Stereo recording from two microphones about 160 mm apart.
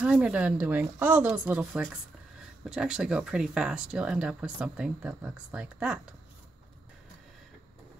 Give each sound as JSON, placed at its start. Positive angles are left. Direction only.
{"t": 0.0, "sound": "speech", "side_deg": -5}